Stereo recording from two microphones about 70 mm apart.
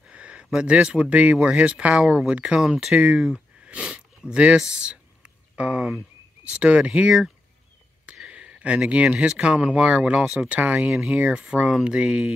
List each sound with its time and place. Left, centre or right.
0.0 s a sound: centre
0.5 s speech: centre
3.6 s sniff: centre
4.6 s speech: centre